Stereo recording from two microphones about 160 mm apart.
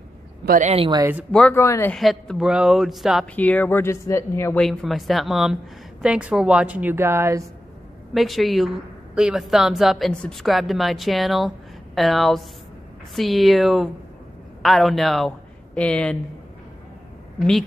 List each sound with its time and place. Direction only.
0.5 s speech: 45° right (ahead or behind)
1.3 s a woman's voice: 5° left (ahead or behind)
2.0 s a woman's voice: centre (ahead or behind)
3.3 s speech: 10° left (ahead or behind)
4.6 s a woman's voice: centre (ahead or behind); by 7.4 s 15° right (ahead or behind)
8.1 s a woman's voice: centre (ahead or behind)